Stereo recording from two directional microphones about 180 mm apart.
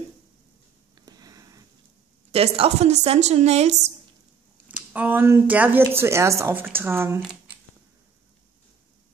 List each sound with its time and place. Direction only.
0.9 s a sound: 20° right (ahead or behind)
2.3 s a woman's voice: 35° right (ahead or behind)
4.6 s speech: 10° right (ahead or behind)